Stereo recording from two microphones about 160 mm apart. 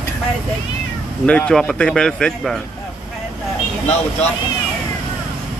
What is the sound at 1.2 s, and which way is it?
Speech, 5° left (ahead or behind).